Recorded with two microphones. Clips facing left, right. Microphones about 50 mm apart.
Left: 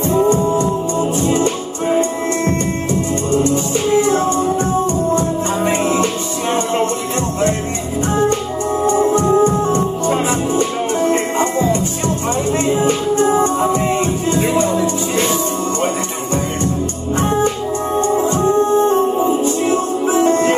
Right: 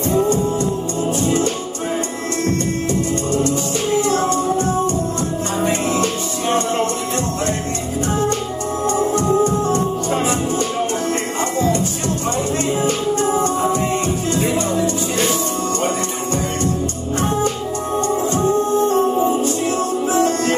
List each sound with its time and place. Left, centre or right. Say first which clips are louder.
0.1 s music: left 4 dB; left
5.1 s music: left 5 dB; left
8.8 s organ: left 3 dB; left
11.0 s music: left 5 dB; left
17.9 s music: left 3 dB; left